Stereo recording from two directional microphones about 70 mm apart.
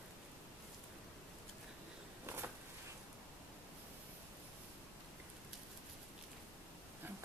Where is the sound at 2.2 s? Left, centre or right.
Right.